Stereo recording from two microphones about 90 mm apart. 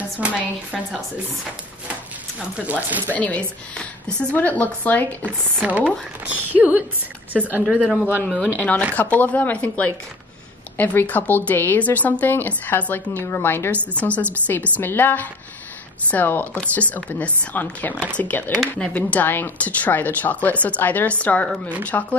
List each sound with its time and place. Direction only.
0.2 s a woman's voice: 15° right (ahead or behind)
2.5 s a woman's voice: 15° right (ahead or behind)
3.1 s a woman's voice: 15° left (ahead or behind)
5.2 s a woman's voice: 20° right (ahead or behind)
7.7 s a man's voice: centre (ahead or behind)
8.5 s a woman's voice: 15° left (ahead or behind)
21.9 s speech: 30° left (ahead or behind)